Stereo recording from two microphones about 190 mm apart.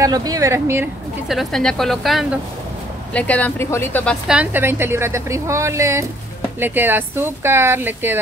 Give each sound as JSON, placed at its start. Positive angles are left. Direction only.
{"t": 0.0, "sound": "a woman's voice", "side_deg": -20}
{"t": 1.3, "sound": "speech", "side_deg": 0}
{"t": 4.4, "sound": "a woman's voice", "side_deg": -10}